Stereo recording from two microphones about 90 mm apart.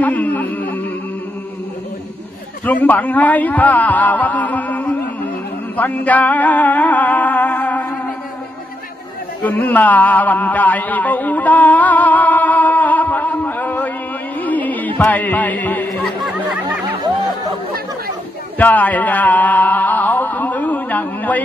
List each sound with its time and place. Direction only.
0.0 s a man's voice: 20° left (ahead or behind)
2.6 s a man's voice: 20° left (ahead or behind)
5.8 s music: 20° left (ahead or behind)
9.4 s a sound: 20° left (ahead or behind)
14.4 s music: 20° left (ahead or behind)
15.0 s a man's voice: 20° left (ahead or behind)
16.3 s a sound: 15° right (ahead or behind)
18.6 s music: 20° left (ahead or behind)